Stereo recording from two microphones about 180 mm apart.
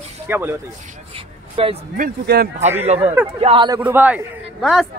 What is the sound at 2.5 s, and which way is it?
Speech, 10° right (ahead or behind).